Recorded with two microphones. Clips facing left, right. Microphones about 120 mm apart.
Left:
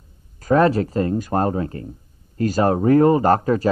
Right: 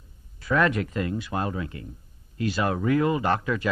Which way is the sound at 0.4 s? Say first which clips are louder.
Left 7 dB; 40° left (ahead or behind).